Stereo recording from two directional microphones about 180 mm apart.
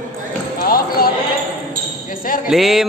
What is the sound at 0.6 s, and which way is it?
Music, 55° left (ahead or behind).